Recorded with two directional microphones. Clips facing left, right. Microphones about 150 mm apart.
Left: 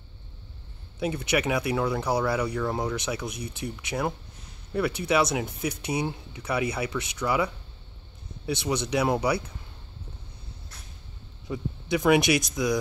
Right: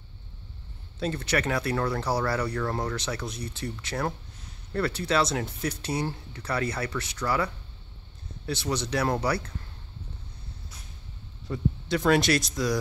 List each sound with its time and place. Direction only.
0.9 s speech: 15° left (ahead or behind)
2.6 s speech: 5° left (ahead or behind)
3.0 s speech: 15° left (ahead or behind)
11.5 s speech: 5° left (ahead or behind)